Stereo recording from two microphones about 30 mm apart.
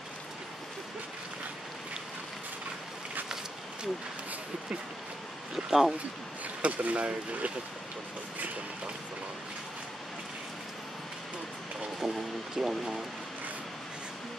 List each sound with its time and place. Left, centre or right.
5.7 s speech: centre
6.6 s speech: right
12.5 s speech: centre